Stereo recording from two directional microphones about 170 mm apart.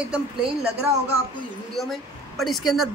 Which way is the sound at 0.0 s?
5° right (ahead or behind).